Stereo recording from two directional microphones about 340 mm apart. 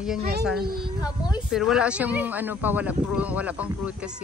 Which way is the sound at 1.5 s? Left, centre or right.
Centre.